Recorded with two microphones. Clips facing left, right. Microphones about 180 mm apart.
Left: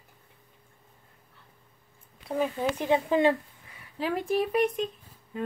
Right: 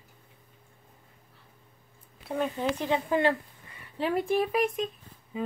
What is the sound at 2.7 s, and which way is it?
Speech, 15° left (ahead or behind).